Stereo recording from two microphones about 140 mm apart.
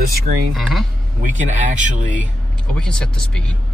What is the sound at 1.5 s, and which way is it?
Speech, 60° right (ahead or behind).